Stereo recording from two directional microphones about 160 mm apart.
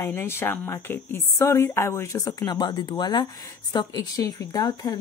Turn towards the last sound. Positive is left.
turn(degrees=25)  # may be behind; listen again after turning